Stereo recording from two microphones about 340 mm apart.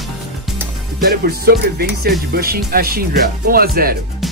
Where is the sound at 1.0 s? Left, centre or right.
Right.